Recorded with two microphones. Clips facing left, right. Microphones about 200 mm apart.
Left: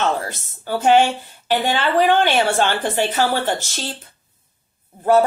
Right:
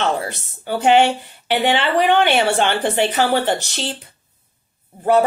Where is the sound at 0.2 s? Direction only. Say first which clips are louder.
Right 2 dB; 15° right (ahead or behind).